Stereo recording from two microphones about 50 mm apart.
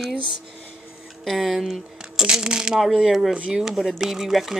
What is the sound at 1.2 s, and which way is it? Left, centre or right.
Speech, centre.